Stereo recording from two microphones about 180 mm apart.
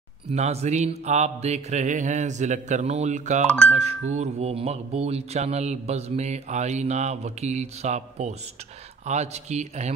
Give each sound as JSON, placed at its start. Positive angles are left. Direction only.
{"t": 0.3, "sound": "speech", "side_deg": -35}